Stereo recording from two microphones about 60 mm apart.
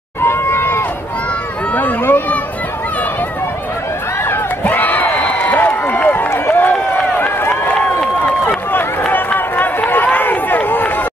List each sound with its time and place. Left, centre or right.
0.2 s run: left
1.7 s run: left
4.2 s a sound: left
6.3 s run: left
9.0 s run: left